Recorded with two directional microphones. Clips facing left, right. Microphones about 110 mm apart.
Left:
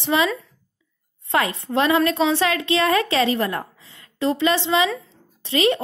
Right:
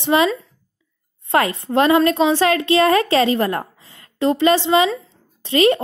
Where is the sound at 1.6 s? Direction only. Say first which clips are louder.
Right 4 dB; 40° right (ahead or behind).